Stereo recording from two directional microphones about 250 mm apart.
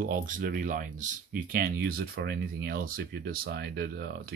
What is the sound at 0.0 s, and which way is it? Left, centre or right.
Speech, right.